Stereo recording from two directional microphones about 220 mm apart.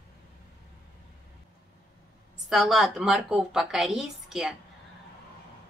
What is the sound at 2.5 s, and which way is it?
Speech, centre (ahead or behind).